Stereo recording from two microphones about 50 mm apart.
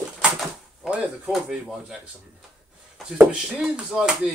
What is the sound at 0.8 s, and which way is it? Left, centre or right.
Speech, centre.